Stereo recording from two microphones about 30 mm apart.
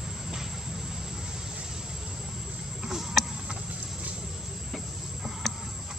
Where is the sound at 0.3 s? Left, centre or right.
Centre.